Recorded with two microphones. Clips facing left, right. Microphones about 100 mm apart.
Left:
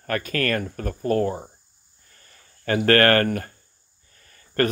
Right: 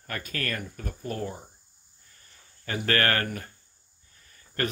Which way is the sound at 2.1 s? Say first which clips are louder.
Left 3 dB; 60° left (ahead or behind).